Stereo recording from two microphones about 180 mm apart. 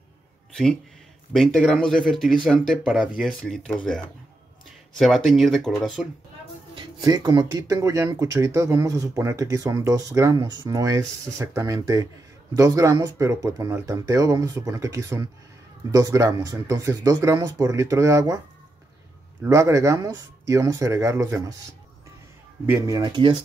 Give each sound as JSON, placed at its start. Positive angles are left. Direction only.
{"t": 1.3, "sound": "speech", "side_deg": 0}
{"t": 6.7, "sound": "speech", "side_deg": -20}
{"t": 19.4, "sound": "speech", "side_deg": -15}
{"t": 22.7, "sound": "speech", "side_deg": -15}